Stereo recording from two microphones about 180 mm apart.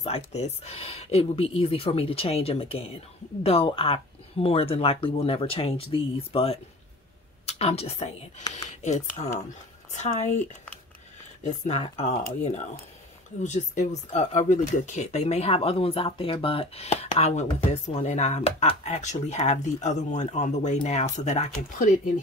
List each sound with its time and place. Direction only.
0.0 s speech: 35° left (ahead or behind)
11.4 s speech: 40° left (ahead or behind)